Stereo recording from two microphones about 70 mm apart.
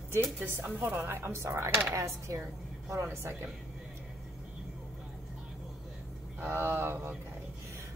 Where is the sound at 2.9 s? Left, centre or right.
Right.